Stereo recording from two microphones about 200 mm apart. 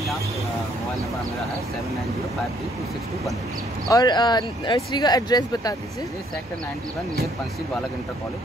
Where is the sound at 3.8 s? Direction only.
20° left (ahead or behind).